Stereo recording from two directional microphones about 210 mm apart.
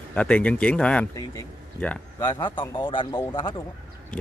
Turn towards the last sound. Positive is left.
turn(degrees=20)  # may be behind; listen again after turning